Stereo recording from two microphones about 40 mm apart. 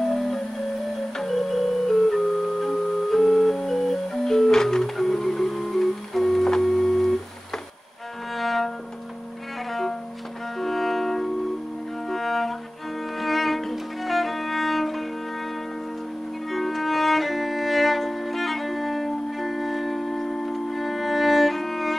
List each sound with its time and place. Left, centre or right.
0.0 s music: centre
8.4 s music: centre
13.2 s violin: centre
16.4 s music: centre